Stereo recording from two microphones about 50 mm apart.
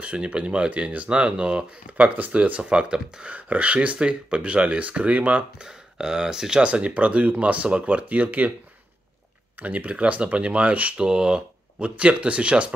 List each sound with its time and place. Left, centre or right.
0.0 s speech: right
2.0 s speech: right; by 3.3 s centre
3.3 s speech: right
5.6 s speech: centre; by 8.5 s right
9.6 s speech: right
11.1 s speech: centre